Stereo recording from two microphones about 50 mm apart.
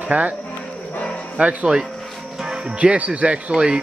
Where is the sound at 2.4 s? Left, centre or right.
Centre.